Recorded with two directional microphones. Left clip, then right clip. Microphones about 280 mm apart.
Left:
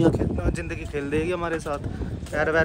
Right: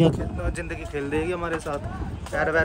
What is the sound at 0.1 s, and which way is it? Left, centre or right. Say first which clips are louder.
Speech: left 4 dB; centre.